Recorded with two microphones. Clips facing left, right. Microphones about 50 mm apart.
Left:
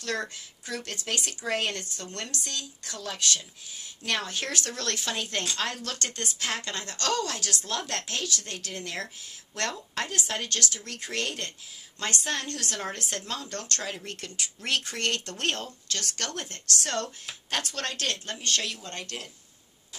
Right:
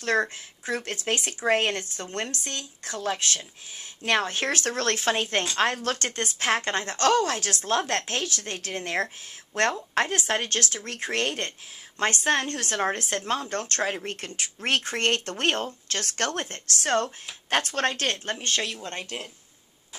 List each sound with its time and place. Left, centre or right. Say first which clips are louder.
0.0 s a woman's voice: right 7 dB; right